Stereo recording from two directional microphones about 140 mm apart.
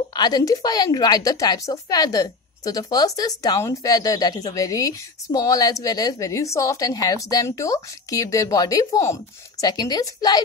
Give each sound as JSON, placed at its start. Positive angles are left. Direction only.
{"t": 0.1, "sound": "speech", "side_deg": 30}